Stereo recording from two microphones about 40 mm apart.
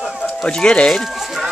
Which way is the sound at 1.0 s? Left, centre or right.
Centre.